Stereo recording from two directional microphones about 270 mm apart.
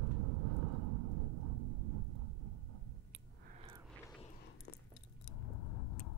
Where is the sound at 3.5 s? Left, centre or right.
Right.